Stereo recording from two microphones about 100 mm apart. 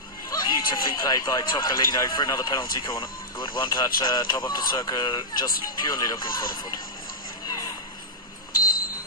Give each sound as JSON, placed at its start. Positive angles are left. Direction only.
{"t": 0.3, "sound": "speech", "side_deg": 45}